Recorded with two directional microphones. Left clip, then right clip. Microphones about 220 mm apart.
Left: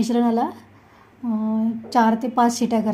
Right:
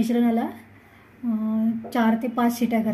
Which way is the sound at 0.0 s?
30° left (ahead or behind).